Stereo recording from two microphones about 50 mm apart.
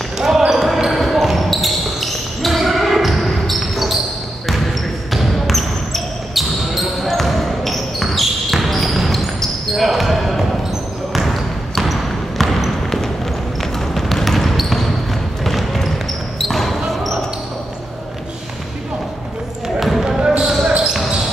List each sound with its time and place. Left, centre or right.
0.5 s basketball bounce: centre
5.1 s basketball bounce: centre
11.1 s trickle: centre
13.6 s basketball bounce: centre
19.8 s basketball bounce: centre
20.2 s basketball bounce: centre